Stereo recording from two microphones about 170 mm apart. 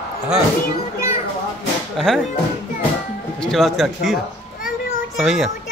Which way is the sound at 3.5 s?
Centre (ahead or behind).